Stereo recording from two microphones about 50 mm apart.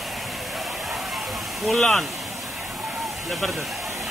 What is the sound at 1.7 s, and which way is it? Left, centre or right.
Speech, centre.